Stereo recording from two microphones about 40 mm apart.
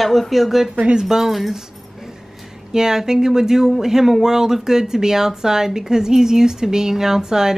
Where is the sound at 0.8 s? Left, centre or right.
Right.